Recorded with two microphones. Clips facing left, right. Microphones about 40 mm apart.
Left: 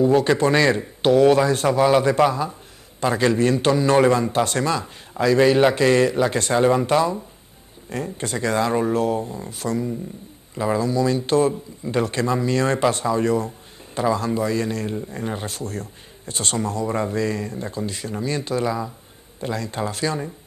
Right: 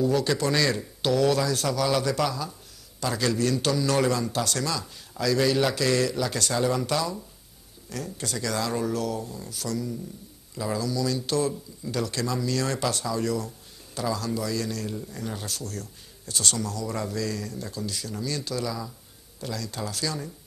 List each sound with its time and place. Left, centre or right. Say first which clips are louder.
0.0 s speech: left 7 dB; left